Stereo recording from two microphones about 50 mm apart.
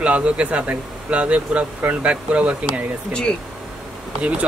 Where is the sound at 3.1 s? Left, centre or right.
Centre.